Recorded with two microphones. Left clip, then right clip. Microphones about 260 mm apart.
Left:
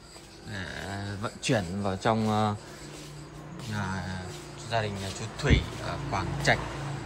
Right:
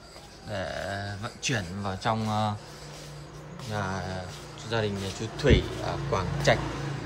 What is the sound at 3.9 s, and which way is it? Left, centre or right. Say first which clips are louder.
Speech: right 3 dB; right.